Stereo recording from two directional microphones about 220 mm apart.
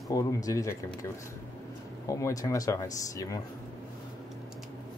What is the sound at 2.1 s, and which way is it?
Speech, 15° left (ahead or behind).